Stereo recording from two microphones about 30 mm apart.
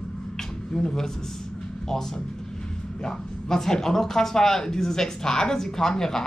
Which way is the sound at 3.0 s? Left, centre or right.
Centre.